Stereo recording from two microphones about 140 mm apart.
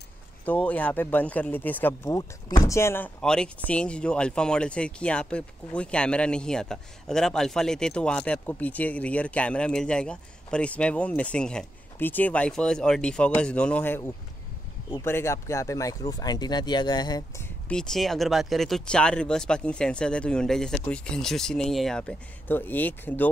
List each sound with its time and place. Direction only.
0.5 s speech: 10° left (ahead or behind)
2.0 s speech: 25° left (ahead or behind)
3.2 s speech: 5° left (ahead or behind); by 17.2 s 30° left (ahead or behind)
17.4 s speech: 5° left (ahead or behind)